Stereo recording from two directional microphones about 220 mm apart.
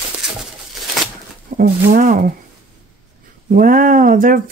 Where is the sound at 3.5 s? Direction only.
40° right (ahead or behind).